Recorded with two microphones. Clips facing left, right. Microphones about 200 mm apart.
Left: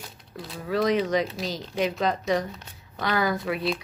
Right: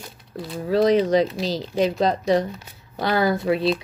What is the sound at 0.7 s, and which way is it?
Speech, 30° right (ahead or behind).